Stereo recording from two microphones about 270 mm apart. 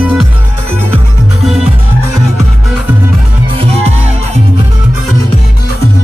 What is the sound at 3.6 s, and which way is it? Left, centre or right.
Music, right.